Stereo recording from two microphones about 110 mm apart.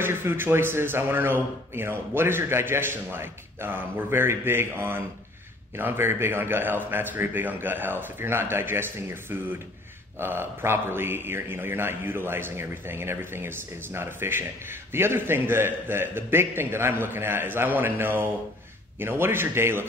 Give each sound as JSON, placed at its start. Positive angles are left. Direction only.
{"t": 0.0, "sound": "a man's voice", "side_deg": -20}